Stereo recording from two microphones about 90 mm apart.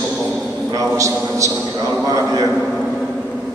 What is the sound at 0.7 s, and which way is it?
Speech, 35° right (ahead or behind).